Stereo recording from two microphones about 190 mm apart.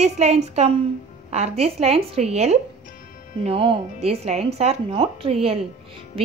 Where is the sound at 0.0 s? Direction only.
35° right (ahead or behind).